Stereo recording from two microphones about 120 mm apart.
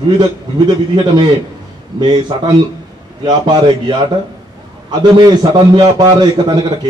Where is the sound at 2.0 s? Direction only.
40° right (ahead or behind).